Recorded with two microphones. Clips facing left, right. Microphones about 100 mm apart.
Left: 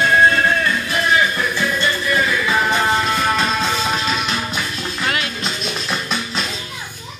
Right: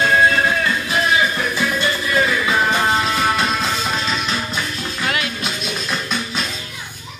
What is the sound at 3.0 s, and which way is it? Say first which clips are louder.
Music: even; 5° right (ahead or behind).